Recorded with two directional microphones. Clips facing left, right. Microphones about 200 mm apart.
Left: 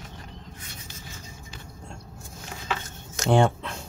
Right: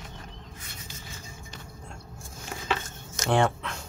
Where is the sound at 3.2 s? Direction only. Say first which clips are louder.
Left 3 dB; 25° left (ahead or behind).